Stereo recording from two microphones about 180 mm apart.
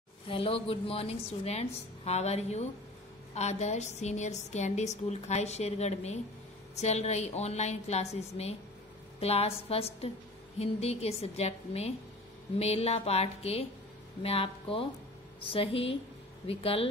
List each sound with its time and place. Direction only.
0.3 s a woman's voice: 30° left (ahead or behind)